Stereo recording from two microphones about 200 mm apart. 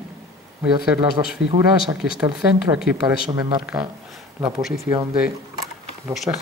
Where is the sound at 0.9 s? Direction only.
25° right (ahead or behind).